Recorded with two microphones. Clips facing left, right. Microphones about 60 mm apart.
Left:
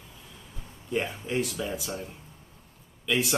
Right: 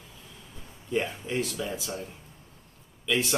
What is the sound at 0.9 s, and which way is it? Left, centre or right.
Speech, centre.